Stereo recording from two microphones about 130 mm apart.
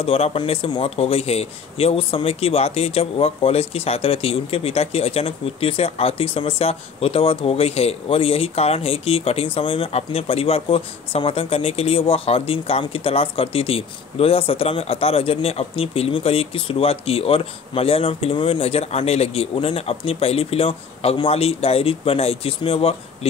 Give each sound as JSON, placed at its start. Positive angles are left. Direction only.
{"t": 0.0, "sound": "speech", "side_deg": 50}